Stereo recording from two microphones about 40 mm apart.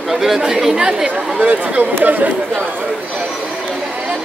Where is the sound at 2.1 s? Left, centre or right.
Right.